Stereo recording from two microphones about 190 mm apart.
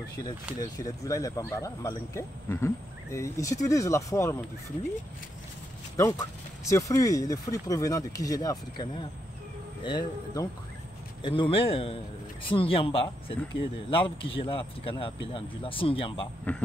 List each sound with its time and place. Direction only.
0.6 s speech: 15° left (ahead or behind)
5.9 s speech: 15° left (ahead or behind)
9.8 s speech: 20° left (ahead or behind)
16.5 s speech: 10° left (ahead or behind)